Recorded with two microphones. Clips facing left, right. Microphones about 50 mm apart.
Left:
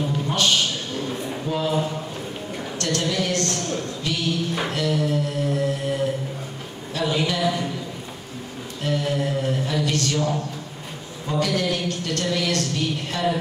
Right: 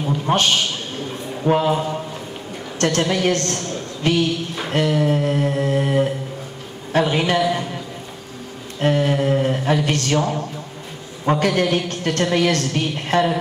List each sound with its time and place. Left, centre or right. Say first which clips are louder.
0.3 s a man's voice: right 4 dB; right
2.8 s a woman's voice: right 6 dB; right
8.8 s a woman's voice: right 6 dB; right